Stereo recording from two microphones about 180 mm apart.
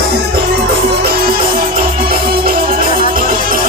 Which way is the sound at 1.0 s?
55° right (ahead or behind).